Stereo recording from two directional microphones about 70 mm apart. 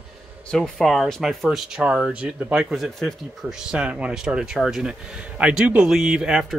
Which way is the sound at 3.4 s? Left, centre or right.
Centre.